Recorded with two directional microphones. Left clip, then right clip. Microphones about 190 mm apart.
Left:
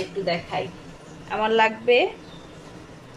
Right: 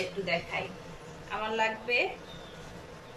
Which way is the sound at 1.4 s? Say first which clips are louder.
Left 11 dB; 45° left (ahead or behind).